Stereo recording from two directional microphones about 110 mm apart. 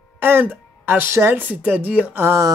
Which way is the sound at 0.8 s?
20° right (ahead or behind).